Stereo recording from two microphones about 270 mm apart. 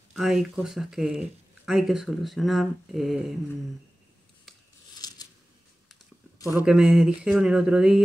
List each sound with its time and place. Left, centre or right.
0.1 s speech: centre
4.5 s scissors: centre
4.9 s a sound: centre
6.5 s speech: centre